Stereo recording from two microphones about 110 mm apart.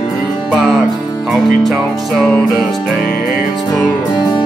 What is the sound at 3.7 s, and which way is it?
Music, 35° left (ahead or behind).